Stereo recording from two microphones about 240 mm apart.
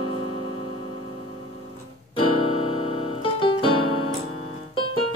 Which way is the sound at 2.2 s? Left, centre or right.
Left.